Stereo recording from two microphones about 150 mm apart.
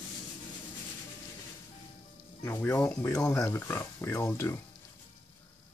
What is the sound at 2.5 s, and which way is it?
Speech, 15° left (ahead or behind).